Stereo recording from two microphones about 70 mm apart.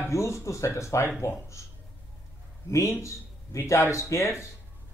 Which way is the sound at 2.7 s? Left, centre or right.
Left.